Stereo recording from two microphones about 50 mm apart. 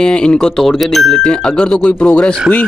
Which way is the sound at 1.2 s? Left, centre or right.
Centre.